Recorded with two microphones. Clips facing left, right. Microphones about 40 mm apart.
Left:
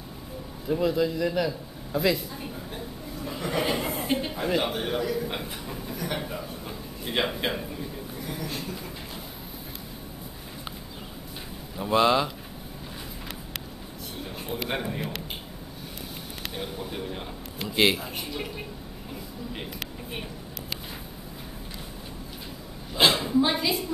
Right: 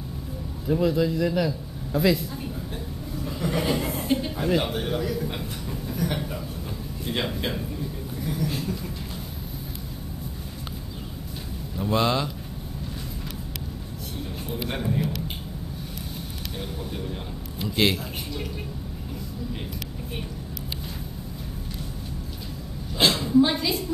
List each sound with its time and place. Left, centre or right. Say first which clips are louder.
0.7 s a man's voice: right 2 dB; centre
3.2 s chuckle: right 1 dB; centre
7.1 s speech: left 1 dB; centre
8.2 s speech: right 6 dB; centre
11.7 s speech: left 2 dB; centre
14.5 s a sound: right 1 dB; centre
16.5 s speech: even; centre
22.9 s a woman's voice: right 2 dB; centre